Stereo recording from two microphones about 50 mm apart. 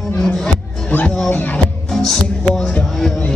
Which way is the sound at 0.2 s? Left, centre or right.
Centre.